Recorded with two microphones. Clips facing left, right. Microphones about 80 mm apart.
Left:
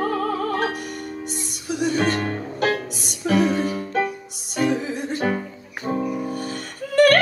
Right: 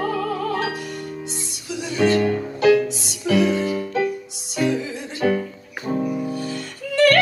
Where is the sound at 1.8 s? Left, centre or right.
Left.